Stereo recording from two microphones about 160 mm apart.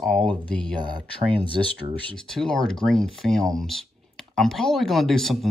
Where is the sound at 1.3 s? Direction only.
30° right (ahead or behind).